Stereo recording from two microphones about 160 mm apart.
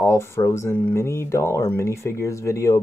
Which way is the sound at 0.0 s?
15° left (ahead or behind).